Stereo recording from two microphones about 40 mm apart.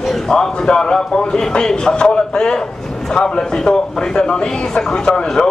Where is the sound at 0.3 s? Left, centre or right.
Centre.